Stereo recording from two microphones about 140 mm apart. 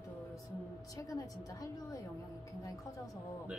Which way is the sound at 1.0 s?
25° left (ahead or behind).